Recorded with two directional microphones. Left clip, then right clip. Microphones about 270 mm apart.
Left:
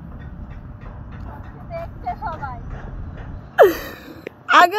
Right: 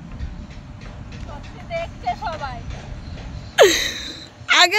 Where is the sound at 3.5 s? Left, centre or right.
Centre.